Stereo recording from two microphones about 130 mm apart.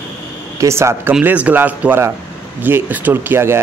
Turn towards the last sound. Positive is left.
turn(degrees=-20)  # may be behind; listen again after turning